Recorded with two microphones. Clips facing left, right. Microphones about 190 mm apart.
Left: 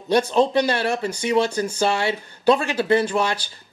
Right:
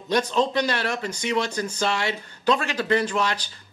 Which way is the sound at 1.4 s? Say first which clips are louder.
Left 5 dB; 30° left (ahead or behind).